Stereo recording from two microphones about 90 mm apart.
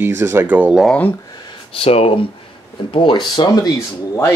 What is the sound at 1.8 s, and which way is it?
Speech, 90° left.